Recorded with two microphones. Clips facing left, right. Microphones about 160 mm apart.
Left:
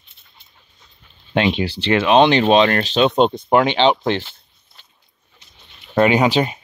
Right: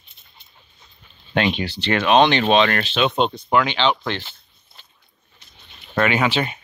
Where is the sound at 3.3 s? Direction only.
25° left (ahead or behind).